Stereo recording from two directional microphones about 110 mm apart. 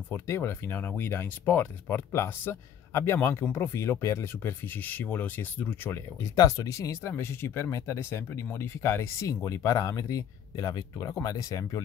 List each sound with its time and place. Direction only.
0.1 s speech: 20° left (ahead or behind)
6.3 s speech: 30° left (ahead or behind)